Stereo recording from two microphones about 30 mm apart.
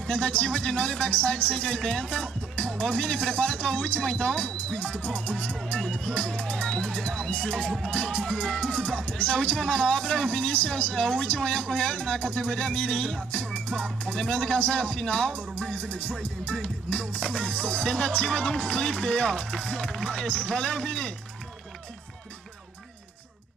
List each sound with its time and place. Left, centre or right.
0.1 s a man's voice: left
4.0 s a man's voice: left
4.7 s music: left
5.8 s a man's voice: left
15.7 s music: left
16.6 s a man's voice: left
20.2 s a man's voice: left